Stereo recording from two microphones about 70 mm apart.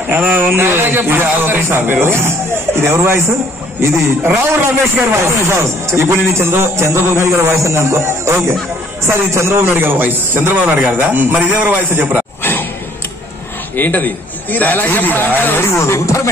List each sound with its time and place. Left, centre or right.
0.1 s a man's voice: right
5.1 s a man's voice: right
13.7 s a man's voice: left
15.8 s speech: left